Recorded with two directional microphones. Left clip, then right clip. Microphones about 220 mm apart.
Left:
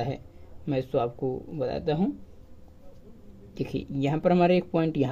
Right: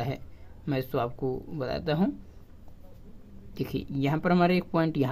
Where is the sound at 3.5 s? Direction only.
15° right (ahead or behind).